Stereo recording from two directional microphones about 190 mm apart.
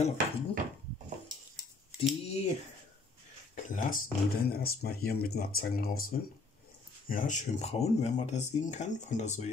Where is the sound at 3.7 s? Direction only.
45° left (ahead or behind).